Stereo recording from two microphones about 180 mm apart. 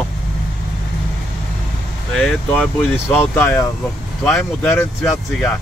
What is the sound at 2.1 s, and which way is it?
Speech, centre (ahead or behind).